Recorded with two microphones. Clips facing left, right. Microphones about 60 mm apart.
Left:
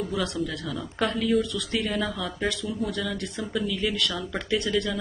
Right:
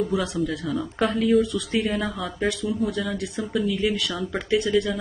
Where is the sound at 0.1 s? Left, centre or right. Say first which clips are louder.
Right 4 dB; centre.